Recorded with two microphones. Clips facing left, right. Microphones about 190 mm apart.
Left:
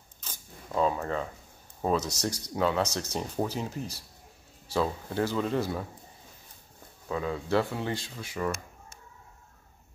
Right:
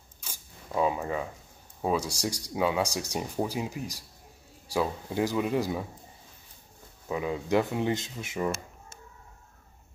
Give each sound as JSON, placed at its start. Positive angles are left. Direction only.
{"t": 0.2, "sound": "a sound", "side_deg": -10}
{"t": 1.8, "sound": "speech", "side_deg": -10}
{"t": 7.1, "sound": "speech", "side_deg": -15}